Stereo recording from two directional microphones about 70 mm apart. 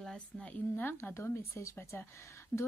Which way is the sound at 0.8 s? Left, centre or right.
Left.